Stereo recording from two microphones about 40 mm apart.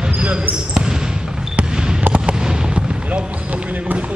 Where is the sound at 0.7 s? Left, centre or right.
Centre.